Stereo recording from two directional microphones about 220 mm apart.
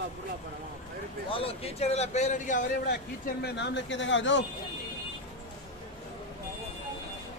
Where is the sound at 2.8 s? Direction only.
50° left (ahead or behind).